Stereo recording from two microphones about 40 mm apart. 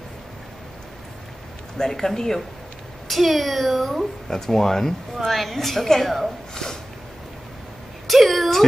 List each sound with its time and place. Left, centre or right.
1.8 s a woman's voice: centre
3.1 s a child's voice: centre
6.5 s a woman's voice: centre
8.1 s a woman's voice: centre